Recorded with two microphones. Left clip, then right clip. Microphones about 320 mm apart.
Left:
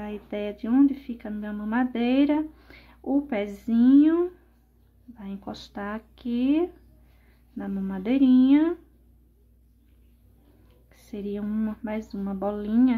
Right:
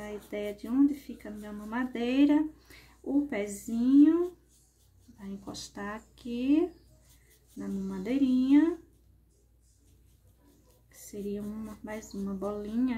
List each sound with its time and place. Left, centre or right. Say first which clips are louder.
0.0 s speech: left 4 dB; centre
5.2 s speech: left 4 dB; centre
10.9 s speech: left 4 dB; centre